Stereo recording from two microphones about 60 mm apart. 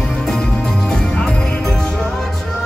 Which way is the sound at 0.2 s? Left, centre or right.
Centre.